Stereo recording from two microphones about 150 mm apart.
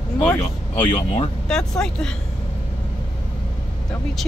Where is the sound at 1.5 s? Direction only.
5° left (ahead or behind).